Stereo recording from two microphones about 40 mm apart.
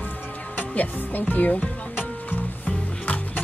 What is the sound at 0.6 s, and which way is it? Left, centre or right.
Speech, left.